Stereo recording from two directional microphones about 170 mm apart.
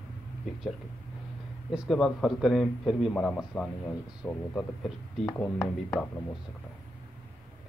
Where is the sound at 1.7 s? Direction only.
Centre (ahead or behind); by 5.6 s 15° left (ahead or behind).